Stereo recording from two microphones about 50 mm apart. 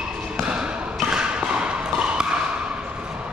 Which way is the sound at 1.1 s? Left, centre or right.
Centre.